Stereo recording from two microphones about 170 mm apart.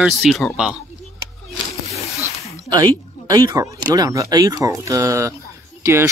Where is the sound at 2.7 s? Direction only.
20° right (ahead or behind).